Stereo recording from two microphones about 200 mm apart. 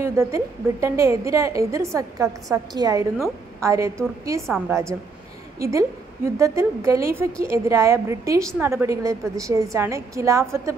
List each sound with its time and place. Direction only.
0.0 s a woman's voice: 15° right (ahead or behind)